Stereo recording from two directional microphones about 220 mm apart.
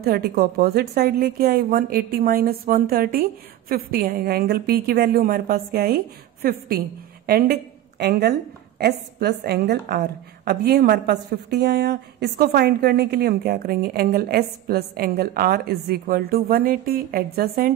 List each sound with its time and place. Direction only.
0.0 s a woman's voice: 45° right (ahead or behind)
7.2 s a woman's voice: 45° right (ahead or behind)